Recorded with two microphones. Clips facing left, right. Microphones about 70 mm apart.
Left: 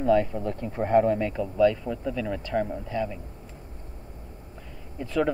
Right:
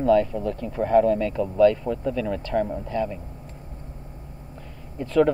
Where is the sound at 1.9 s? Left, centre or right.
Centre.